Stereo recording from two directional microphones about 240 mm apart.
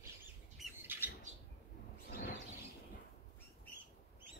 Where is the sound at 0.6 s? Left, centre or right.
Centre.